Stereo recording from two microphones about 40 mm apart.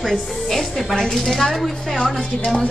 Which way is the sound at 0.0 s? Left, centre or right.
Centre.